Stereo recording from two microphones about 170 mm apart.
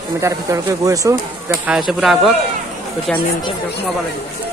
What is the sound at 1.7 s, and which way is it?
Speech, centre (ahead or behind).